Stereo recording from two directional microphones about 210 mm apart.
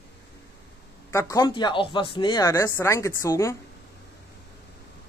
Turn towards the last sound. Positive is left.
turn(degrees=15)  # may be behind; listen again after turning